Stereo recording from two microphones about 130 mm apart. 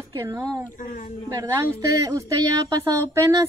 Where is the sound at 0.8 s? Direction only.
90° left.